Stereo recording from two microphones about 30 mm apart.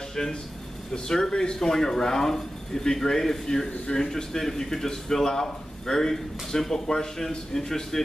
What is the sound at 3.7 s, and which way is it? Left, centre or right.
Speech, left.